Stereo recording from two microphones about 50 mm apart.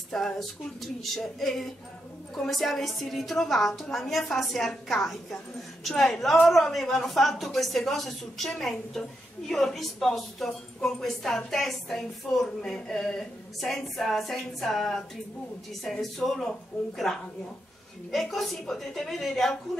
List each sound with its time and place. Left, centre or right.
0.1 s a woman's voice: centre